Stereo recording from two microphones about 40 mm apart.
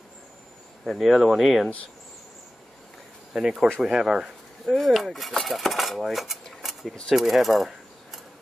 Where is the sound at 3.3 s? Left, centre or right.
Centre.